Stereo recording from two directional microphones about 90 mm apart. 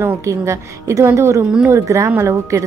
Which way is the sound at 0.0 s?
25° right (ahead or behind).